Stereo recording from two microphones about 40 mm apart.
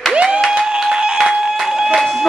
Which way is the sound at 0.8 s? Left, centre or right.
Centre.